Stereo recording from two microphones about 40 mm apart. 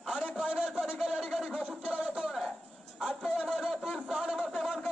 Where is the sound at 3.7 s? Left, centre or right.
Centre.